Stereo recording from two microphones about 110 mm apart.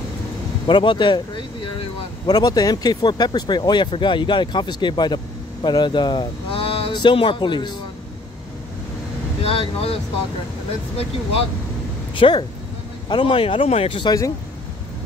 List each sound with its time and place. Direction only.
0.7 s speech: 45° left (ahead or behind)
6.9 s speech: 45° left (ahead or behind)
9.4 s speech: 60° left (ahead or behind)
12.2 s speech: 50° left (ahead or behind)